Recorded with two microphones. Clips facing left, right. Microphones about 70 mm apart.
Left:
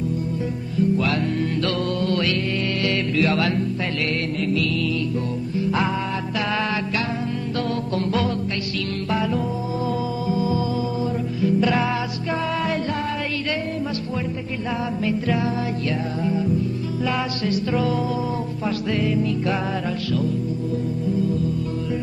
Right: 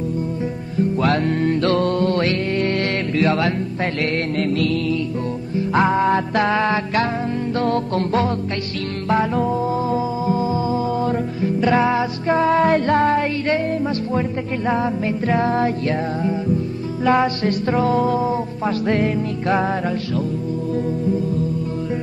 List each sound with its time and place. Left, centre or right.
0.7 s music: right
5.6 s music: right
6.5 s music: right
7.6 s music: right
14.7 s music: right
17.0 s music: right